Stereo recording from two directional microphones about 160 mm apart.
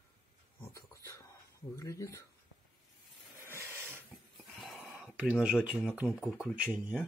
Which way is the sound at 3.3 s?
15° right (ahead or behind).